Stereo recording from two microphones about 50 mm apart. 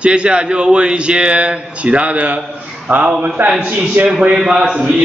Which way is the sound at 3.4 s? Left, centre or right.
Right.